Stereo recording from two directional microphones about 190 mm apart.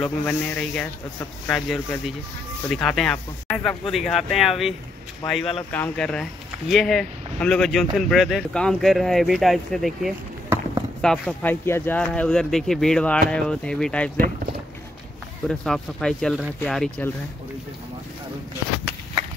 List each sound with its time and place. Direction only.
0.0 s speech: 5° left (ahead or behind)
14.1 s speech: 50° right (ahead or behind)
15.4 s speech: centre (ahead or behind)